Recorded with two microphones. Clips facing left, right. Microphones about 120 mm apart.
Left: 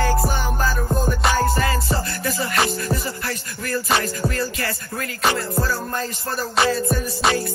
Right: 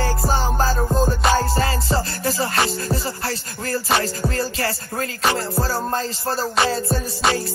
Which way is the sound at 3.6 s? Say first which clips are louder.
Right 1 dB; 30° right (ahead or behind).